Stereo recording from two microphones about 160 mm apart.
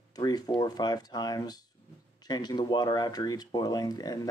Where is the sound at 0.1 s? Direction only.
25° left (ahead or behind).